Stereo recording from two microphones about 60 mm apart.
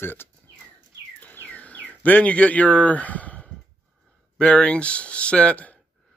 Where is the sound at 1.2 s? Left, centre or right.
Left.